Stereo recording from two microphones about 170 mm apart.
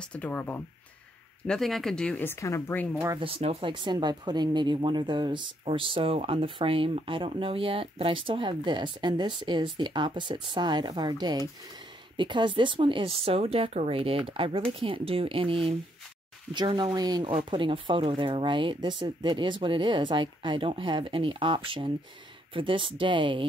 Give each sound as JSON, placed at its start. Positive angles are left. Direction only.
{"t": 0.0, "sound": "speech", "side_deg": 10}
{"t": 3.2, "sound": "speech", "side_deg": -35}